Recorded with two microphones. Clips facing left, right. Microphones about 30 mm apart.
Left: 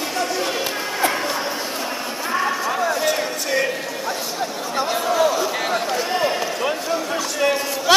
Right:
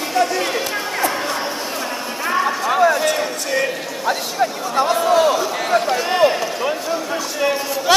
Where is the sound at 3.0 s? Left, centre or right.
Centre.